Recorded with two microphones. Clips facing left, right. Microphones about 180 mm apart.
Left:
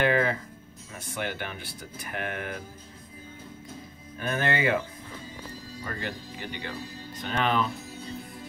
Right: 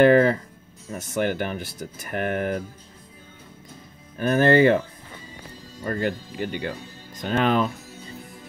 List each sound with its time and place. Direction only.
0.0 s speech: 45° right (ahead or behind)
4.2 s speech: 40° right (ahead or behind)
5.9 s speech: 50° right (ahead or behind)